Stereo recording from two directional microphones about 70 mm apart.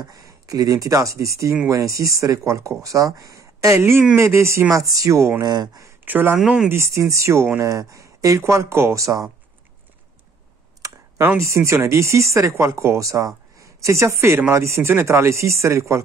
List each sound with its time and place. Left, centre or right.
0.0 s speech: right
5.4 s speech: right
6.0 s speech: right
6.4 s speech: centre
6.7 s speech: right
8.4 s speech: right
10.8 s clicking: right
11.3 s a woman's voice: right